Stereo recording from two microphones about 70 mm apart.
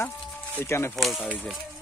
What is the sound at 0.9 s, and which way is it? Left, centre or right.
Speech, centre.